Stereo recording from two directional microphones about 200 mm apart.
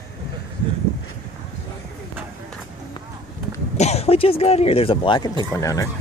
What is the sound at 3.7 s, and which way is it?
Speech, 35° left (ahead or behind).